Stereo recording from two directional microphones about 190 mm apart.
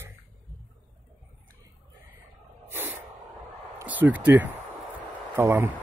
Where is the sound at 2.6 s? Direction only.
10° right (ahead or behind).